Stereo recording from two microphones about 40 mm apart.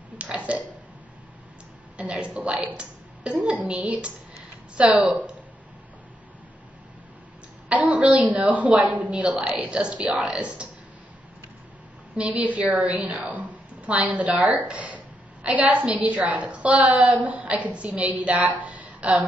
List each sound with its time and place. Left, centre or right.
0.2 s burping: right
2.0 s speech: right
7.7 s speech: right
12.2 s speech: right
13.3 s a sound: right
14.7 s speech: right
17.1 s speech: right
18.6 s a sound: right